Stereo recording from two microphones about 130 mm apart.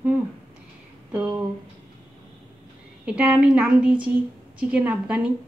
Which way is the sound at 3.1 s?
10° right (ahead or behind).